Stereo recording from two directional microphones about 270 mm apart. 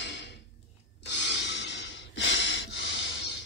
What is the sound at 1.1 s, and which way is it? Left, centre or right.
Breathing, left.